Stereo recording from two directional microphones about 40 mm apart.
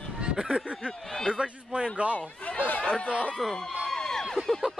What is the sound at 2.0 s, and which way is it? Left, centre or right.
Speech, right.